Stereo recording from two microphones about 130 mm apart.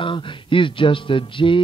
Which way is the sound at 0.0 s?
40° left (ahead or behind).